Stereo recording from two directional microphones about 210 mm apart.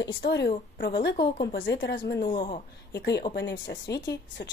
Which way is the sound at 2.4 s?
45° left (ahead or behind).